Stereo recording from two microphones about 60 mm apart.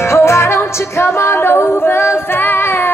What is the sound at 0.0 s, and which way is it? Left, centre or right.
Music, left.